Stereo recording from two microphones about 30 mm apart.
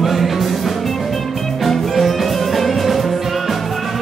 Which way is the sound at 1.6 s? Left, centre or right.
Centre.